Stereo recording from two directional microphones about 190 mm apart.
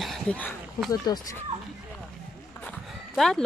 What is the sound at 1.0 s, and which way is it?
Speech, 20° left (ahead or behind).